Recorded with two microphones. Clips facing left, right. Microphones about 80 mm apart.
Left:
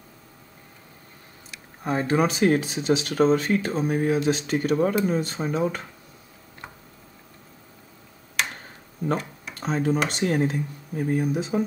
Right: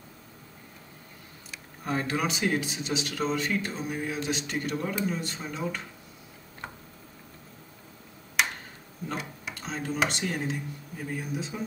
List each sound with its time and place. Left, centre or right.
1.9 s speech: left
9.2 s a sound: centre
9.6 s speech: left